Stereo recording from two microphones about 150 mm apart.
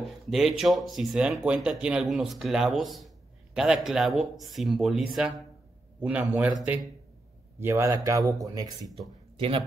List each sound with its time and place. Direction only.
0.3 s a man's voice: centre (ahead or behind)
7.6 s a man's voice: 20° right (ahead or behind)
8.8 s speech: centre (ahead or behind)